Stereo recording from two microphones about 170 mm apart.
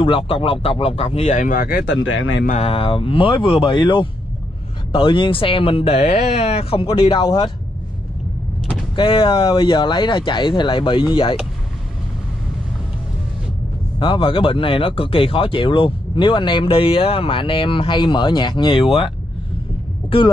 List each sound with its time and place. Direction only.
0.0 s speech: 30° left (ahead or behind); by 2.4 s 80° left
2.6 s speech: 30° left (ahead or behind)
8.9 s speech: 30° left (ahead or behind)
13.9 s speech: 30° left (ahead or behind)